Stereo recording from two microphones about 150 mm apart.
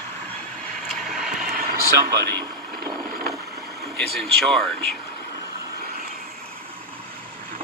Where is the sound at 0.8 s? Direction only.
5° left (ahead or behind).